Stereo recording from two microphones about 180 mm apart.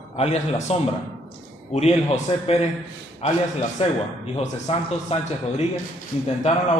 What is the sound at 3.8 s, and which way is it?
Speech, 30° left (ahead or behind).